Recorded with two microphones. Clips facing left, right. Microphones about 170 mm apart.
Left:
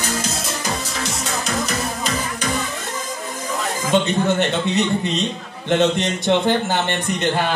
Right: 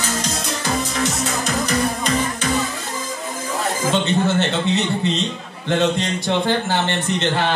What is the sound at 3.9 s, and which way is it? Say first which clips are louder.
A man's voice: left 2 dB; 15° left (ahead or behind).